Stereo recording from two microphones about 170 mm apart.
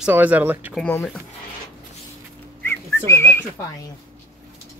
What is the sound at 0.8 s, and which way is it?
Speech, 10° left (ahead or behind).